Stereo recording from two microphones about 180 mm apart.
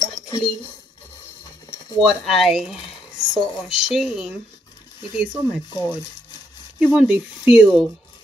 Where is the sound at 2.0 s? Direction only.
Centre (ahead or behind).